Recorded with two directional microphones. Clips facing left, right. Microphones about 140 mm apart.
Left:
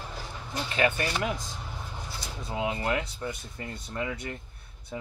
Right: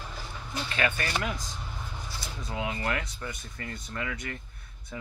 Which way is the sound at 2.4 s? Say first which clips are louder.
Left 2 dB; 25° left (ahead or behind).